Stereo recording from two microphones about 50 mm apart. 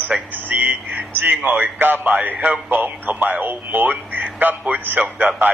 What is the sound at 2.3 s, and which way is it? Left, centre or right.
Speech, right.